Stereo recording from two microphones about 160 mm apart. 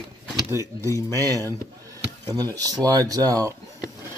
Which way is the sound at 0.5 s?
20° left (ahead or behind).